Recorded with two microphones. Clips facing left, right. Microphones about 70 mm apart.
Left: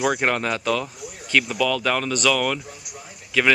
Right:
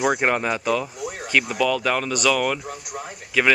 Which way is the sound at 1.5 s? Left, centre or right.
Centre.